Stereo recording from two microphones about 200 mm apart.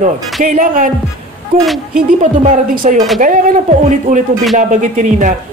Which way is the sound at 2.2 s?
40° right (ahead or behind).